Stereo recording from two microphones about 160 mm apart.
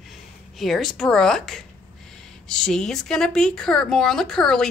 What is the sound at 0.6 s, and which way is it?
Speech, centre (ahead or behind).